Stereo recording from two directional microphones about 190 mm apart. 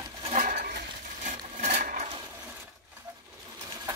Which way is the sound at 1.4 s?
40° right (ahead or behind).